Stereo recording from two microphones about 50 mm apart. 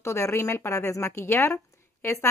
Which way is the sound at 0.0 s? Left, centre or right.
Left.